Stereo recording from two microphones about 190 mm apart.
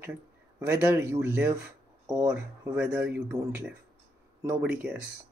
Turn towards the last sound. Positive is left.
turn(degrees=-5)  # may be behind; listen again after turning